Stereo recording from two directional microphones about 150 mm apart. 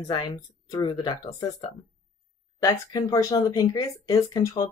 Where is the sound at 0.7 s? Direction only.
30° left (ahead or behind).